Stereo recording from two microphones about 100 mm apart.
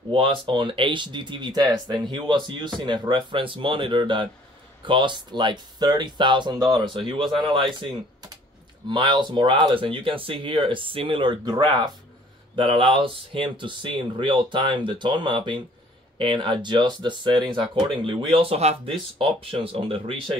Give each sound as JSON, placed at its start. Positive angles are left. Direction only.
{"t": 0.1, "sound": "speech", "side_deg": -60}
{"t": 6.9, "sound": "speech", "side_deg": -60}
{"t": 11.4, "sound": "speech", "side_deg": -45}
{"t": 12.5, "sound": "speech", "side_deg": -65}
{"t": 18.3, "sound": "speech", "side_deg": -70}